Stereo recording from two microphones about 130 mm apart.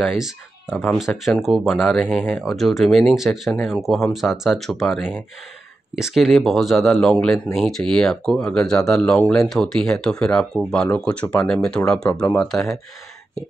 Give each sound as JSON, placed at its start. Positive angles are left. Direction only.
{"t": 0.0, "sound": "speech", "side_deg": -5}